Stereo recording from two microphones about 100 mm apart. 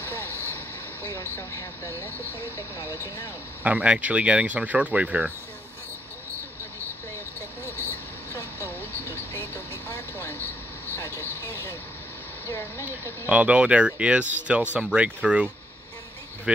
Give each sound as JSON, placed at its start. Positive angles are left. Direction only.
{"t": 0.0, "sound": "vehicle", "side_deg": 25}
{"t": 1.0, "sound": "speech", "side_deg": 25}
{"t": 3.6, "sound": "speech", "side_deg": -15}
{"t": 8.3, "sound": "vehicle", "side_deg": 25}
{"t": 10.9, "sound": "speech", "side_deg": 25}
{"t": 13.3, "sound": "speech", "side_deg": -15}